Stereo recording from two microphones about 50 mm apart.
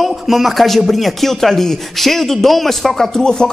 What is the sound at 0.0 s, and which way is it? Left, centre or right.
A man's voice, centre.